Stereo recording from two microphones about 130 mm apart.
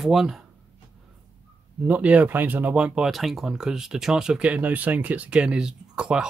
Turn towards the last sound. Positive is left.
turn(degrees=-5)  # may be behind; listen again after turning